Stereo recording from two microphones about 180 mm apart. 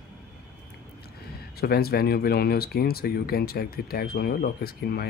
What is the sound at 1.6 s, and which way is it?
Speech, 60° left (ahead or behind).